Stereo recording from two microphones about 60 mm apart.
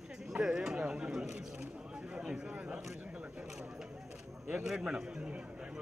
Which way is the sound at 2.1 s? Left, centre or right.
Centre.